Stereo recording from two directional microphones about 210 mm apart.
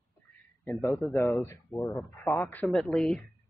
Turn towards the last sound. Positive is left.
turn(degrees=5)  # may be behind; listen again after turning